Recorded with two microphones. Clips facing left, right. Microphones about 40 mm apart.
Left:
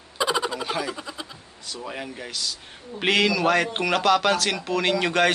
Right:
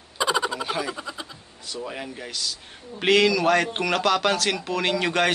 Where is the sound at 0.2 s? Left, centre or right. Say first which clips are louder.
Right 1 dB; centre.